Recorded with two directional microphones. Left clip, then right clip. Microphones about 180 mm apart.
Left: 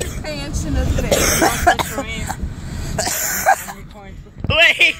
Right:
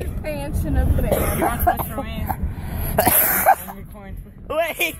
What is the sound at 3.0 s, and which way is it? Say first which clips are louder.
Cough: right 3 dB; 35° right (ahead or behind).